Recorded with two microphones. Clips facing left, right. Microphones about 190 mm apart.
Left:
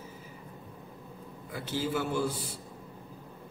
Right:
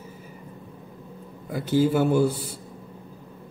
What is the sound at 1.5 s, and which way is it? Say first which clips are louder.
Speech: right 11 dB; 45° right (ahead or behind).